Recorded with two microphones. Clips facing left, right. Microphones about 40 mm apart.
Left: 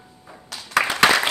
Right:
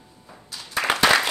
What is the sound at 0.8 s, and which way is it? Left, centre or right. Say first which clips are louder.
Applause: left 4 dB; left.